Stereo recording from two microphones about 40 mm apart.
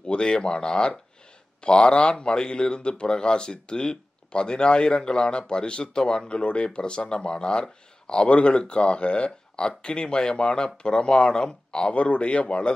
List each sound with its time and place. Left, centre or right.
0.0 s speech: left
11.9 s speech: left